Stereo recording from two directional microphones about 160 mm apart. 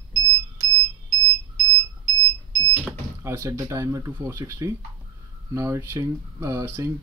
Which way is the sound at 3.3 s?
20° right (ahead or behind).